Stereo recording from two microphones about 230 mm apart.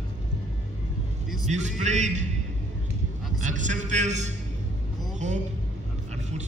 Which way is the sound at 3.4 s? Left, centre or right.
Right.